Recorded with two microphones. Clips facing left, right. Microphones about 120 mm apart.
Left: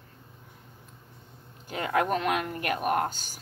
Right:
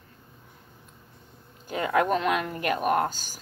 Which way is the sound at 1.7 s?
40° right (ahead or behind).